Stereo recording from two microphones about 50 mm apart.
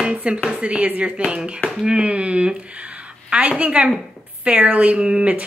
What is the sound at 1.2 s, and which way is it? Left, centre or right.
Speech, centre.